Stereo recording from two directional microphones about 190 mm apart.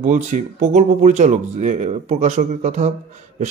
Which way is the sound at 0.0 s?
40° right (ahead or behind).